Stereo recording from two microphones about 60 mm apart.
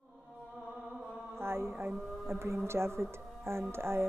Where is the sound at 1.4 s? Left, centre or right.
Right.